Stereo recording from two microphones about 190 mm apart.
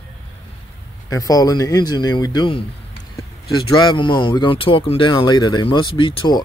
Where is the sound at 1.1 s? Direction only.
20° left (ahead or behind).